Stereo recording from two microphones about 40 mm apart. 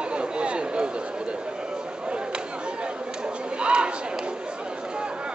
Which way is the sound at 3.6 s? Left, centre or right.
Right.